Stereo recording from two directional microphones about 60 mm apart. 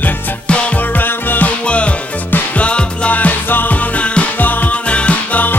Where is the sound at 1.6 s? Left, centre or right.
Left.